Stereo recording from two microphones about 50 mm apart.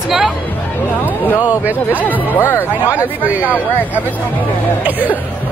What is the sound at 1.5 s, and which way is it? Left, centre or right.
Speech, right.